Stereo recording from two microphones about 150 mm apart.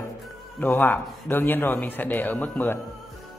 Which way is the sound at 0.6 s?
10° left (ahead or behind).